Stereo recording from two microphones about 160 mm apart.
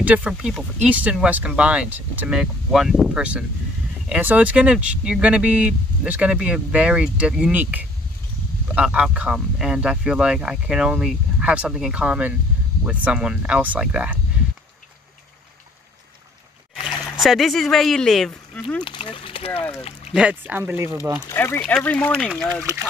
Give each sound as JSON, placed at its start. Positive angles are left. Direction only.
{"t": 0.0, "sound": "speech", "side_deg": -10}
{"t": 16.8, "sound": "speech", "side_deg": 0}
{"t": 18.8, "sound": "speech", "side_deg": 30}
{"t": 20.2, "sound": "speech", "side_deg": -10}
{"t": 21.3, "sound": "speech", "side_deg": 15}
{"t": 22.6, "sound": "speech", "side_deg": -15}